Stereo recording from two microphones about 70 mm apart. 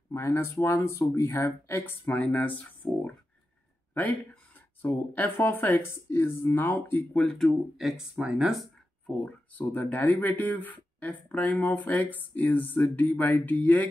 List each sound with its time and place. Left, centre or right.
0.1 s speech: left
2.0 s speech: centre
2.8 s speech: left
3.9 s speech: left
7.2 s speech: centre
7.4 s speech: centre
9.0 s speech: left